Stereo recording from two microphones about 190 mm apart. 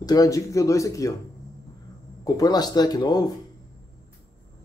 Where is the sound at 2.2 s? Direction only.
20° left (ahead or behind).